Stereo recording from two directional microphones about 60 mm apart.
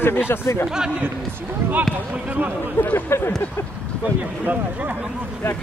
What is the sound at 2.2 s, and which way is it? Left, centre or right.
Speech, right.